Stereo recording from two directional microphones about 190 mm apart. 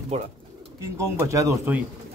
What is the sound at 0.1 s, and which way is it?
Speech, 35° right (ahead or behind).